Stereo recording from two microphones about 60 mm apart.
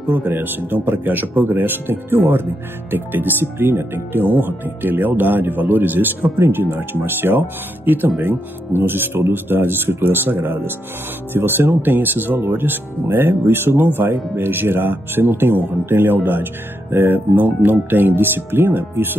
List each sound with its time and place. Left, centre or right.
0.1 s speech: right